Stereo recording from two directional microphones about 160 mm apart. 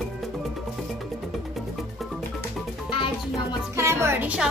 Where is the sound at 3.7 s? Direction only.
15° right (ahead or behind).